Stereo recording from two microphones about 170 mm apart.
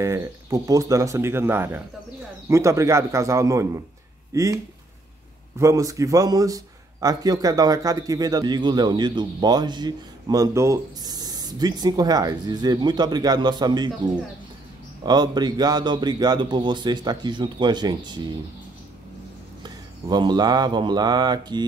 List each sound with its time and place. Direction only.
0.0 s speech: 20° right (ahead or behind)
5.6 s speech: 20° right (ahead or behind)
19.6 s speech: 25° right (ahead or behind)